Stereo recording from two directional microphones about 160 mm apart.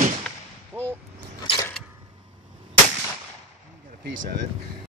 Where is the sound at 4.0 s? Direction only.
65° right (ahead or behind).